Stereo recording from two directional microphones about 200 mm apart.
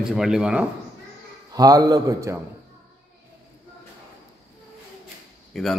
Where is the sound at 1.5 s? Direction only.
20° right (ahead or behind).